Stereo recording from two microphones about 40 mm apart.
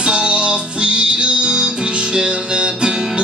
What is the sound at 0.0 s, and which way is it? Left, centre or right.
Music, right.